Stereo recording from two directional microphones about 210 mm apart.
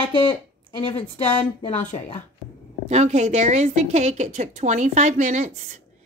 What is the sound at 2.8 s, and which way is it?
A woman's voice, 30° right (ahead or behind).